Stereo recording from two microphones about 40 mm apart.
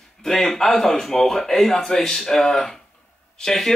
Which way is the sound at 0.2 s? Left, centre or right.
Centre.